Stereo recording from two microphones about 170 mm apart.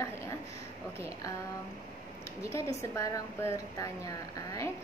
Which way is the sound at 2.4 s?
20° left (ahead or behind).